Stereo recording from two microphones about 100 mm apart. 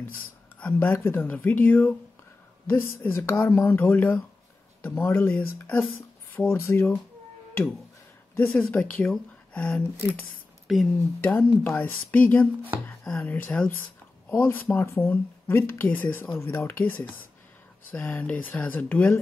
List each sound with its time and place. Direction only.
0.6 s speech: 20° left (ahead or behind)
8.4 s speech: 15° left (ahead or behind)
10.7 s speech: centre (ahead or behind)
11.1 s speech: 20° left (ahead or behind)